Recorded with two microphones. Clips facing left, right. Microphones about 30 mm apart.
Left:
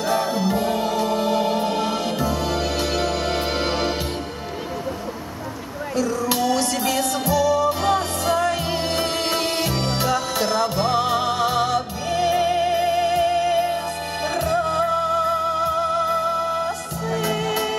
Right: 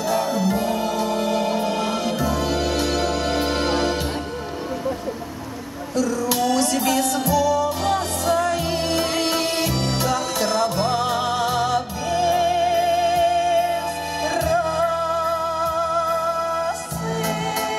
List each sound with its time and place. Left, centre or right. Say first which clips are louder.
0.0 s music: even; left
5.9 s music: right 1 dB; centre
9.3 s music: even; centre